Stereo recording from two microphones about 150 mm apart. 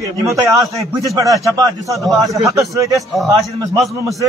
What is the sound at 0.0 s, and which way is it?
A man's voice, 20° right (ahead or behind).